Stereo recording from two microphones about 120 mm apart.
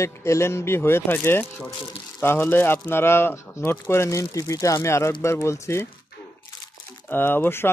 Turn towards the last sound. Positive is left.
turn(degrees=20)  # may be behind; listen again after turning